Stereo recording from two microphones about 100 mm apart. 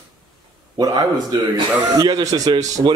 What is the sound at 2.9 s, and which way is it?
Speech, 50° right (ahead or behind).